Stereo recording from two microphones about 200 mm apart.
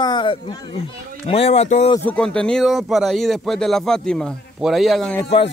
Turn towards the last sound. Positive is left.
turn(degrees=0)  # may be behind; listen again after turning